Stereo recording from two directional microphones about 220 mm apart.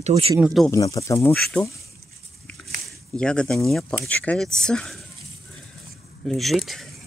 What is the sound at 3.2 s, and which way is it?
Speech, 5° left (ahead or behind).